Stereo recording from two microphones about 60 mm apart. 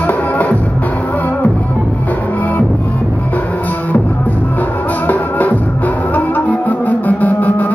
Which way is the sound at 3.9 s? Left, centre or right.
Left.